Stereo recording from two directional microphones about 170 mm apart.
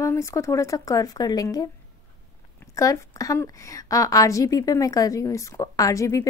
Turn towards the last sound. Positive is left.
turn(degrees=20)  # may be behind; listen again after turning